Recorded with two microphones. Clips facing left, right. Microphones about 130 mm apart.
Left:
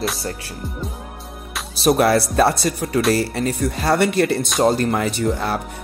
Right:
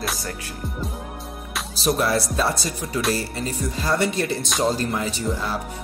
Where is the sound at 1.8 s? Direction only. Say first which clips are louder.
Left 6 dB; 65° left (ahead or behind).